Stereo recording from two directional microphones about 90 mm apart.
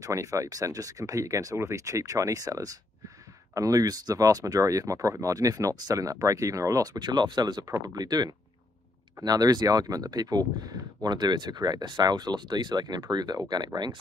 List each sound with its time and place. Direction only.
0.0 s speech: 40° right (ahead or behind)
7.6 s speech: 40° right (ahead or behind)